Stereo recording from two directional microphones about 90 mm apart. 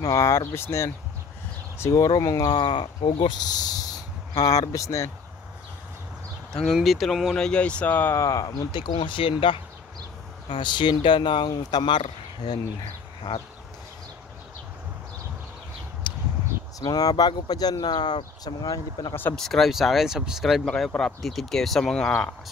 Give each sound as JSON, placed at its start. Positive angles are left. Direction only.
{"t": 0.0, "sound": "speech", "side_deg": 35}
{"t": 3.3, "sound": "speech", "side_deg": 50}
{"t": 6.5, "sound": "speech", "side_deg": 0}
{"t": 7.3, "sound": "speech", "side_deg": 10}
{"t": 8.2, "sound": "speech", "side_deg": 40}
{"t": 8.7, "sound": "speech", "side_deg": 65}
{"t": 10.5, "sound": "speech", "side_deg": 60}
{"t": 16.0, "sound": "a sound", "side_deg": 65}
{"t": 16.8, "sound": "speech", "side_deg": 45}
{"t": 19.3, "sound": "speech", "side_deg": 5}